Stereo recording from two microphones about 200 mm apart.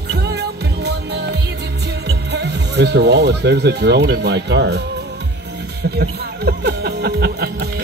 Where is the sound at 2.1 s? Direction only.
60° right (ahead or behind).